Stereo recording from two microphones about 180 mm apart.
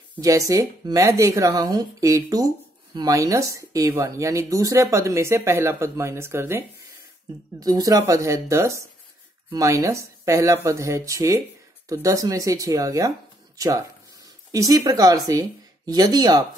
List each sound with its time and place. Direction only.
0.2 s speech: 20° right (ahead or behind)
7.6 s speech: 20° right (ahead or behind)